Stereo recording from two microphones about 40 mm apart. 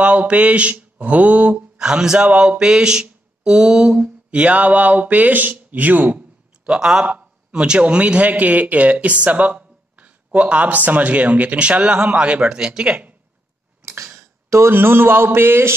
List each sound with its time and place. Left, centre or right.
0.0 s speech: right
1.8 s speech: centre
2.6 s a sound: centre
3.9 s speech: right
6.6 s a man's voice: right
11.5 s speech: right
12.4 s speech: centre
13.8 s a sound: right
14.7 s a man's voice: right